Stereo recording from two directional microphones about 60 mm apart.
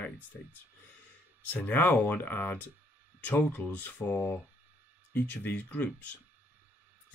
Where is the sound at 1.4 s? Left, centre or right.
Left.